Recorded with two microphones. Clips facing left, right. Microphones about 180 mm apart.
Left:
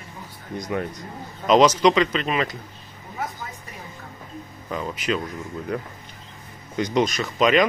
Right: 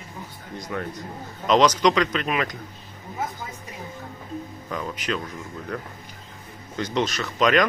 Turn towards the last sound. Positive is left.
turn(degrees=5)  # may be behind; listen again after turning